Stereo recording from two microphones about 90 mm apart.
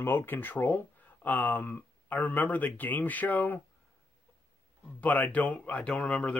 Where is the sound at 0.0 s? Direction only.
25° left (ahead or behind).